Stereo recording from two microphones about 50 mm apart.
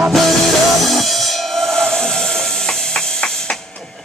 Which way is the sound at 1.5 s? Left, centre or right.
Centre.